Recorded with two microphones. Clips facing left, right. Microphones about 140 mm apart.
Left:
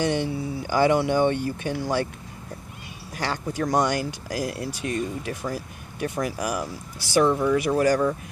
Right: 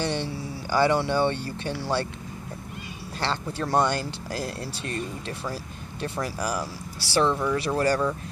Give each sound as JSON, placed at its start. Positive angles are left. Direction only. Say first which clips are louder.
{"t": 0.0, "sound": "speech", "louder": "left 4 dB", "side_deg": 15}
{"t": 3.2, "sound": "speech", "louder": "left 2 dB", "side_deg": 15}